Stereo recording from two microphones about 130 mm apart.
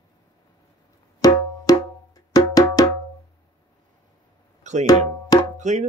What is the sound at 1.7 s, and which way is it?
Wood block, 30° left (ahead or behind).